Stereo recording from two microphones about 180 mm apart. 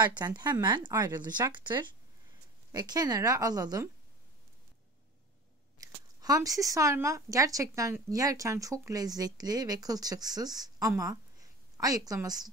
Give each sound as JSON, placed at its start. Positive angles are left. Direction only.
{"t": 0.4, "sound": "speech", "side_deg": -25}
{"t": 5.8, "sound": "speech", "side_deg": -20}